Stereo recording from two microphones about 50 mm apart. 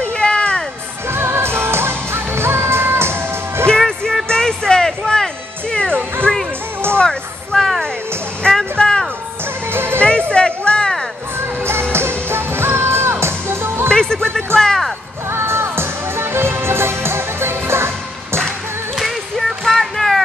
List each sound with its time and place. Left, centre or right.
0.0 s music: left
1.0 s music: right
3.6 s music: centre
7.0 s a sound: centre
8.7 s music: centre
9.7 s music: right
9.9 s music: left
11.3 s music: right
13.8 s music: centre
14.6 s a sound: centre
15.2 s music: right
18.9 s music: centre